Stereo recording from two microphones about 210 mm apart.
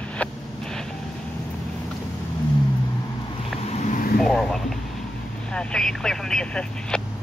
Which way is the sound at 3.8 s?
35° left (ahead or behind).